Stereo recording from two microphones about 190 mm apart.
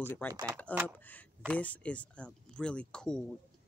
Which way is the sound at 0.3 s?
20° right (ahead or behind).